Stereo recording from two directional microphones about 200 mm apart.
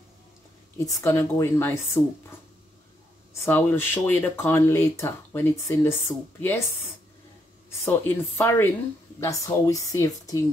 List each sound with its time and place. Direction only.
0.7 s speech: 15° left (ahead or behind)
3.4 s speech: 10° left (ahead or behind)
7.8 s speech: 10° left (ahead or behind)